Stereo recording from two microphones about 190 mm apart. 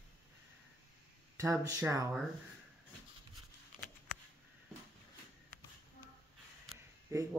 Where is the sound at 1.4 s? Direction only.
15° right (ahead or behind).